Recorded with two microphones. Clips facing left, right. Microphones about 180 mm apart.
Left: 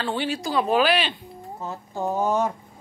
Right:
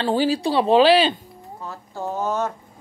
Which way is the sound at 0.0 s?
35° right (ahead or behind).